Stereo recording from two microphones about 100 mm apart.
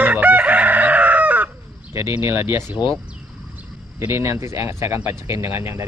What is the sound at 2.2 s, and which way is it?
Speech, 25° right (ahead or behind).